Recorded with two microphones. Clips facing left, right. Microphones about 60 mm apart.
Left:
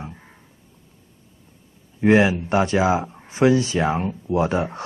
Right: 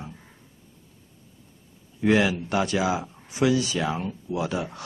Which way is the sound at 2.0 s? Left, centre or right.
Left.